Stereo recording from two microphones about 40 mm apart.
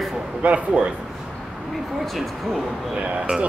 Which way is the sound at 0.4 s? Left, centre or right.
Right.